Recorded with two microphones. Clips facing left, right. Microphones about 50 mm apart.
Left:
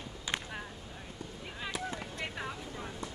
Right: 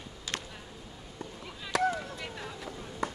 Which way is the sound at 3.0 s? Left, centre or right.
Right.